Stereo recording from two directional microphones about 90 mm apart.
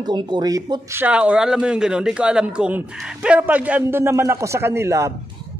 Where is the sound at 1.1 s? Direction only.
15° right (ahead or behind); by 5.1 s 30° right (ahead or behind).